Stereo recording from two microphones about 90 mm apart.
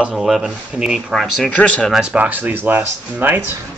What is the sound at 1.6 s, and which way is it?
Speech, 15° left (ahead or behind).